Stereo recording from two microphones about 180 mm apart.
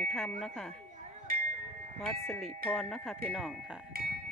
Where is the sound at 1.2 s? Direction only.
50° right (ahead or behind).